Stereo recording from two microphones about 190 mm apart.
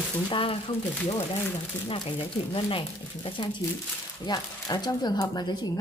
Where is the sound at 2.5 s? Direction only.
30° left (ahead or behind).